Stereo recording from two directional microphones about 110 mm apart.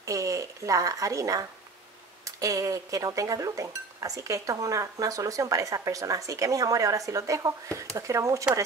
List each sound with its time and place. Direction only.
0.0 s a woman's voice: 30° right (ahead or behind)